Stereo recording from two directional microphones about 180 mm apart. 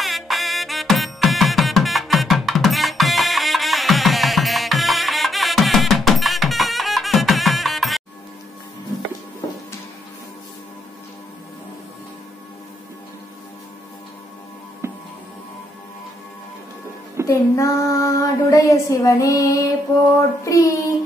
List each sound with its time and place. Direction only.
0.0 s music: centre (ahead or behind)
14.8 s music: 15° right (ahead or behind)
17.3 s child singing: 15° left (ahead or behind)